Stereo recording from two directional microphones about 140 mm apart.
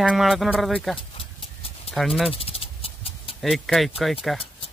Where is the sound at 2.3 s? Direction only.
40° left (ahead or behind).